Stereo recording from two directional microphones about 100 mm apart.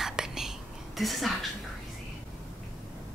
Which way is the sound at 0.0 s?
5° right (ahead or behind).